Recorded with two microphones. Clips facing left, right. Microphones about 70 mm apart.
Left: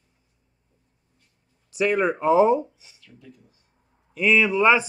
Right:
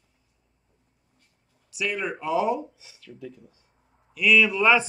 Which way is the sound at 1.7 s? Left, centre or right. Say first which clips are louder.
Left 8 dB; left.